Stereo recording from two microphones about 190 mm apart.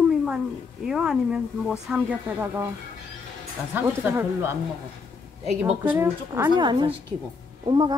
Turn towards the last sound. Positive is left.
turn(degrees=-25)  # may be behind; listen again after turning